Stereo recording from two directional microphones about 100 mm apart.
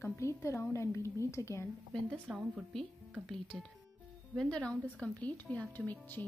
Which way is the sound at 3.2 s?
5° left (ahead or behind).